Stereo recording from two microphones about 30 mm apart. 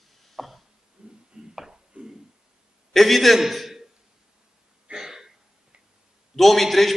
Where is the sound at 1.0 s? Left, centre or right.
Right.